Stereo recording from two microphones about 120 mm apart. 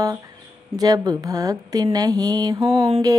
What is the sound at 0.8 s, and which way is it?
Speech, 35° right (ahead or behind).